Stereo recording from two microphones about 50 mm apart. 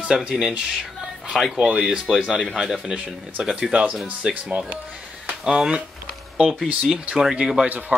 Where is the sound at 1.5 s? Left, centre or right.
Centre.